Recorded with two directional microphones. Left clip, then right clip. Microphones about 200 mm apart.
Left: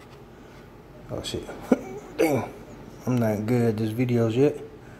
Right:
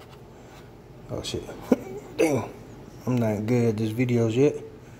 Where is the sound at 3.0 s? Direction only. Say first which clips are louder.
Left 1 dB; centre (ahead or behind).